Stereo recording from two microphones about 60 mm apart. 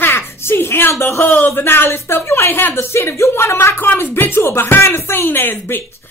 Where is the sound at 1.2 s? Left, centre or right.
Left.